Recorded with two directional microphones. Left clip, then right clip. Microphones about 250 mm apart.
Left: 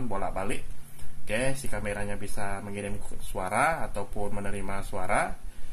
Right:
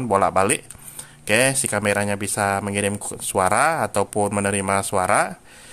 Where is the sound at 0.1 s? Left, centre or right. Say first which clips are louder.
Right 16 dB; right.